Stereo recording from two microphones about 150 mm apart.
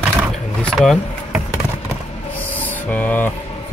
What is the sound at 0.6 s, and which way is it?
Speech, centre (ahead or behind).